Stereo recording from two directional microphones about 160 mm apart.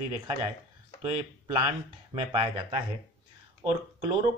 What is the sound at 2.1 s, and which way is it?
Speech, 30° right (ahead or behind).